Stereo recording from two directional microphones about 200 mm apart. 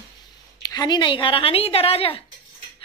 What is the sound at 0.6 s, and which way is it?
A woman's voice, 20° left (ahead or behind).